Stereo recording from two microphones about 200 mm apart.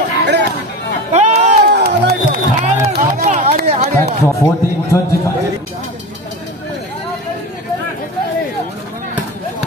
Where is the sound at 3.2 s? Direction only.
40° right (ahead or behind).